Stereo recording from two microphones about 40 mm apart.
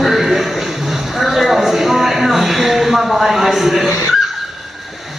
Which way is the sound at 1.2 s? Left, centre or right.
Centre.